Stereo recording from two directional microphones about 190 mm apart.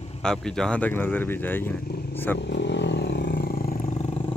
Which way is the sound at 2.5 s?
65° left (ahead or behind).